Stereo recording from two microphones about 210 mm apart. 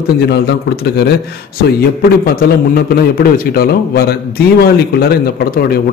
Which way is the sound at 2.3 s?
45° left (ahead or behind).